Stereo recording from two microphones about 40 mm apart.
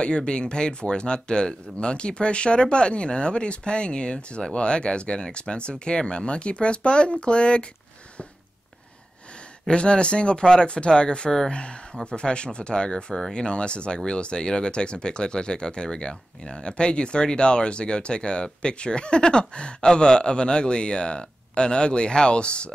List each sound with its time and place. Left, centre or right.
0.0 s speech: left
9.7 s speech: left